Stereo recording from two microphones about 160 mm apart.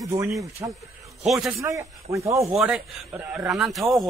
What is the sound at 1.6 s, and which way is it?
Speech, 20° right (ahead or behind).